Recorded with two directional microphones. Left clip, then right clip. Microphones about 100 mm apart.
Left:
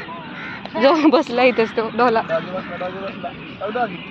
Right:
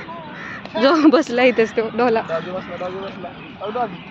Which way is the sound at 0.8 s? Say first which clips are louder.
Even; 45° right (ahead or behind).